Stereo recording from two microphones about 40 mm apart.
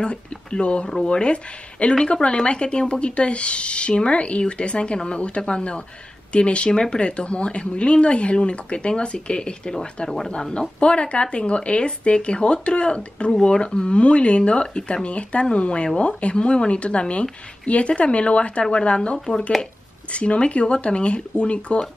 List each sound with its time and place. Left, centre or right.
0.0 s speech: left